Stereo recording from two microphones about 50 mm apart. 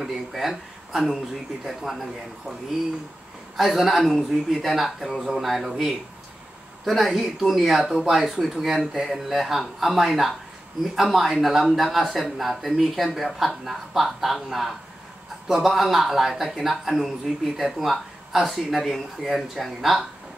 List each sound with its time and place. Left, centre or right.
0.0 s a man's voice: centre
3.5 s a man's voice: centre